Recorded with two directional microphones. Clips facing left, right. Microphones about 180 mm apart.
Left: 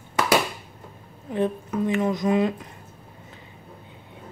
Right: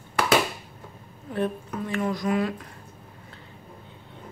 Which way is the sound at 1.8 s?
20° left (ahead or behind).